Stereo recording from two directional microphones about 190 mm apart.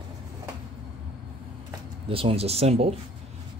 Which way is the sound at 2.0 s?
30° right (ahead or behind).